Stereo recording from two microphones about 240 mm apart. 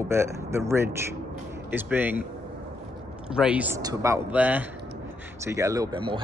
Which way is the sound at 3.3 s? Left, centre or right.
Centre.